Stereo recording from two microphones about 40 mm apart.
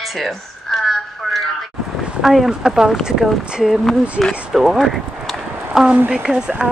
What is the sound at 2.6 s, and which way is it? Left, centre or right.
Speech, centre.